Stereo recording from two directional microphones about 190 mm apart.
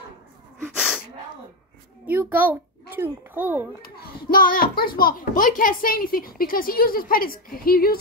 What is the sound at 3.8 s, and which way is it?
A child's voice, 50° left (ahead or behind).